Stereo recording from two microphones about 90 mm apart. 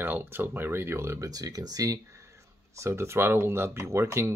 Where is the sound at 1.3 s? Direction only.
45° right (ahead or behind).